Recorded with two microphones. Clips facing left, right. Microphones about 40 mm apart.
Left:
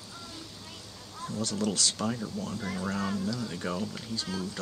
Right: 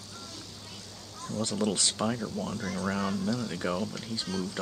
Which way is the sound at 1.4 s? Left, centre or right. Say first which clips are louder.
Right 1 dB; centre.